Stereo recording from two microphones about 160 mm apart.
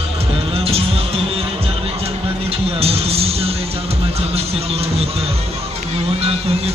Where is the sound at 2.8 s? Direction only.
40° right (ahead or behind).